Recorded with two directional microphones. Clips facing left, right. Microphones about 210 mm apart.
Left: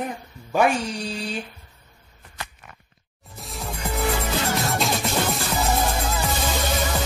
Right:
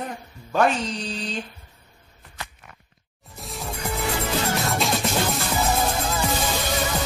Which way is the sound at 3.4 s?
Centre (ahead or behind).